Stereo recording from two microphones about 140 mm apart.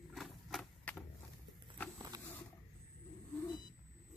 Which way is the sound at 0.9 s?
10° left (ahead or behind).